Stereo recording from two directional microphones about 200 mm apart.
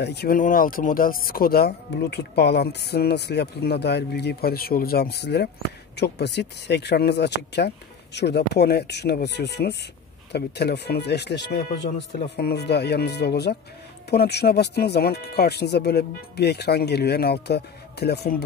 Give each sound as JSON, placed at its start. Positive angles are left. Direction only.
{"t": 0.0, "sound": "speech", "side_deg": 55}